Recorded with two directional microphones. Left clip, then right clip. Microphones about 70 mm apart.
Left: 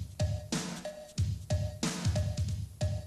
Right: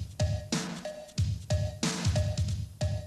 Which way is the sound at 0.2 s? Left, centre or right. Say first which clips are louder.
Right 3 dB; left.